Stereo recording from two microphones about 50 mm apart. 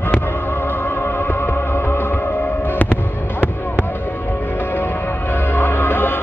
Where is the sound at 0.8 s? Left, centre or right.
Left.